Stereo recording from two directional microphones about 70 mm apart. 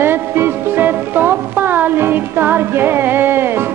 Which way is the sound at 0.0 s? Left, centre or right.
Right.